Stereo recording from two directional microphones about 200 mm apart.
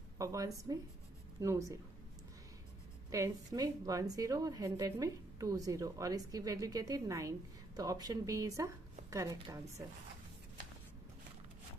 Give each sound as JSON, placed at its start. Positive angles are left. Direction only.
{"t": 0.2, "sound": "a woman's voice", "side_deg": -15}
{"t": 3.1, "sound": "a woman's voice", "side_deg": -15}